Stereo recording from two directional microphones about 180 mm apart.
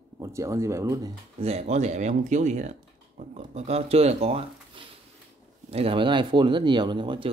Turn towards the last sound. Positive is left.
turn(degrees=-25)  # may be behind; listen again after turning